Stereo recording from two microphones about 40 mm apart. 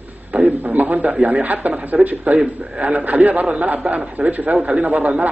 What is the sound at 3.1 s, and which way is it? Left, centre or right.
A man's voice, right.